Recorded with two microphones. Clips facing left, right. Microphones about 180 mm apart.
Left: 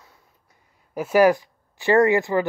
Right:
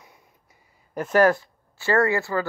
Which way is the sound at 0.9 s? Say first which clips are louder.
Left 2 dB; 10° left (ahead or behind).